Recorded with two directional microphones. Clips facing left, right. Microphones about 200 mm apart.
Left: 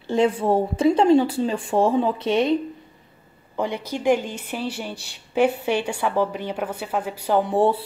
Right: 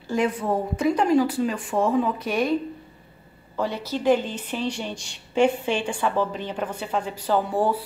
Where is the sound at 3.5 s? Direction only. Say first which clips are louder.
Left 1 dB; 15° left (ahead or behind).